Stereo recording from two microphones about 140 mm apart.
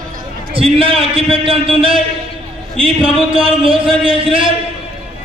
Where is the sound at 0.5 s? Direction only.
40° right (ahead or behind).